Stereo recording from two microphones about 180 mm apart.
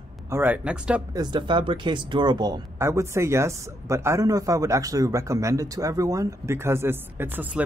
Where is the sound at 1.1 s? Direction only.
25° right (ahead or behind).